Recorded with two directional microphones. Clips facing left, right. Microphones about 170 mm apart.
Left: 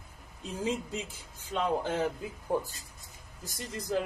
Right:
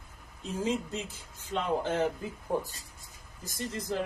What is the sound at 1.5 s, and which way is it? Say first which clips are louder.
Speech: even; centre (ahead or behind).